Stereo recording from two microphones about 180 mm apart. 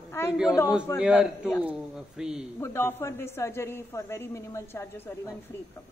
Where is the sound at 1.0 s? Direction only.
5° right (ahead or behind).